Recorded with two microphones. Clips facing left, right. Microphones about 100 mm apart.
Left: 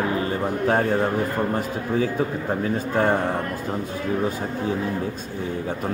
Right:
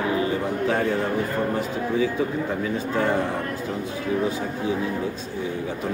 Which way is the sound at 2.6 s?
45° left (ahead or behind).